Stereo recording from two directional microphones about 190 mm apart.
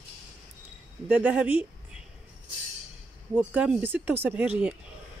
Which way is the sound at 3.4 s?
5° right (ahead or behind).